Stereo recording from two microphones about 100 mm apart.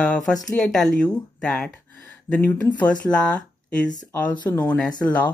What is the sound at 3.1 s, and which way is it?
Speech, 10° left (ahead or behind).